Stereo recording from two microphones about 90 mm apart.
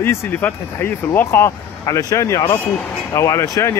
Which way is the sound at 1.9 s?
40° left (ahead or behind).